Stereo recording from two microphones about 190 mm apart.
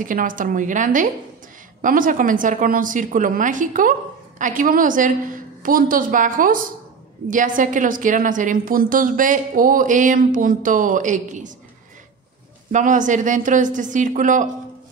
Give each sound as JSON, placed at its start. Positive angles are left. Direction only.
{"t": 0.0, "sound": "a woman's voice", "side_deg": -45}
{"t": 12.7, "sound": "a woman's voice", "side_deg": -40}